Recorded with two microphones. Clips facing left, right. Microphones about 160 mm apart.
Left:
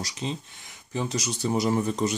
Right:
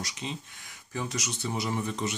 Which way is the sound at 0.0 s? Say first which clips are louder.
Left 5 dB; 35° left (ahead or behind).